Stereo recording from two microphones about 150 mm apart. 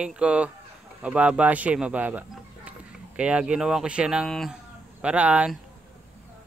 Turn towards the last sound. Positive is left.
turn(degrees=-10)  # may be behind; listen again after turning